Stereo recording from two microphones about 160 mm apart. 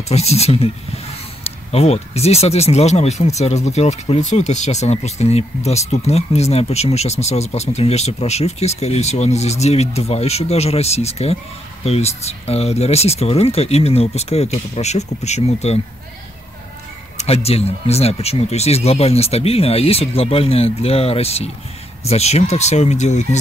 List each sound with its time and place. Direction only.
0.1 s speech: 40° left (ahead or behind)
17.2 s speech: 40° left (ahead or behind)